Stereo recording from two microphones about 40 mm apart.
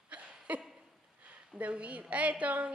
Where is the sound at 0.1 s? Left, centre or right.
Right.